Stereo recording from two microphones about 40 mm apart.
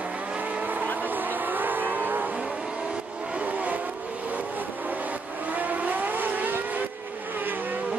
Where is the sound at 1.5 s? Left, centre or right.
Right.